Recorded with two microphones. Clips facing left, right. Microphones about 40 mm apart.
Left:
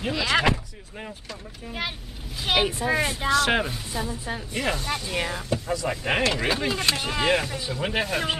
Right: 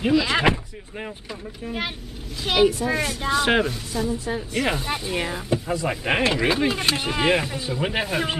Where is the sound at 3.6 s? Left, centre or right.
Centre.